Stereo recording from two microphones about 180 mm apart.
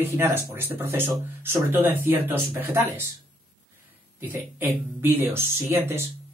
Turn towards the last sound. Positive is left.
turn(degrees=-15)  # may be behind; listen again after turning